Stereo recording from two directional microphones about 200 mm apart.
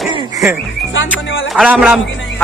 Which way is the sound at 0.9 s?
70° left (ahead or behind).